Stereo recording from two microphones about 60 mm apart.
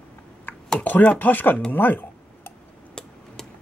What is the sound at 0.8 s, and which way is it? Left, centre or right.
Speech, left.